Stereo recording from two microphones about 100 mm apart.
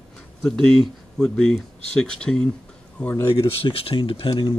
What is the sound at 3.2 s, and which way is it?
Speech, 30° left (ahead or behind).